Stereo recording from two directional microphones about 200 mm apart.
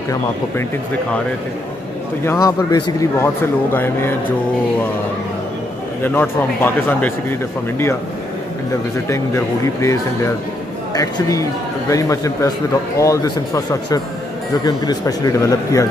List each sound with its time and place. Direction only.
2.2 s a man's voice: 15° left (ahead or behind)
6.0 s a man's voice: 10° left (ahead or behind)
9.1 s a man's voice: 15° left (ahead or behind)